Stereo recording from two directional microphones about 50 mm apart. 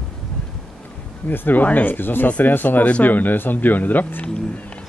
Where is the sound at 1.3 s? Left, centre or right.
Left.